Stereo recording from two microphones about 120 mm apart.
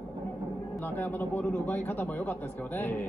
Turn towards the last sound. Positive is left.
turn(degrees=20)  # may be behind; listen again after turning